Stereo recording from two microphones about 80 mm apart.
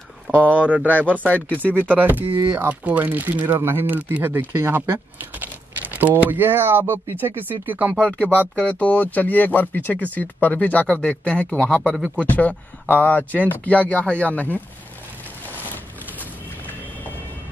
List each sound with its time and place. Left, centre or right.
0.5 s speech: centre
1.1 s speech: centre
1.7 s speech: right
8.1 s speech: centre